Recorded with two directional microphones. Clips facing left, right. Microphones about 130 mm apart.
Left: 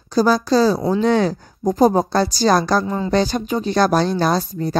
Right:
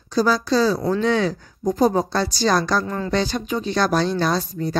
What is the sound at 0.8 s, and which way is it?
Speech, 15° left (ahead or behind).